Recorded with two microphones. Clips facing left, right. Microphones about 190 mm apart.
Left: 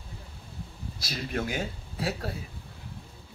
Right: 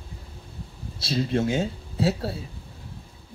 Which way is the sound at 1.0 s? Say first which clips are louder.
Right 8 dB; 30° right (ahead or behind).